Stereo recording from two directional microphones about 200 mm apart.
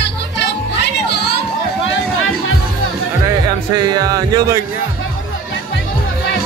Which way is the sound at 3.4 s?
20° right (ahead or behind).